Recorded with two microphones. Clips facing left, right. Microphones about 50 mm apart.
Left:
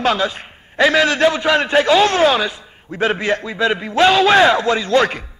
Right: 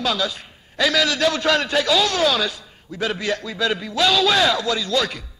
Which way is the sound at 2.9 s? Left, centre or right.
Left.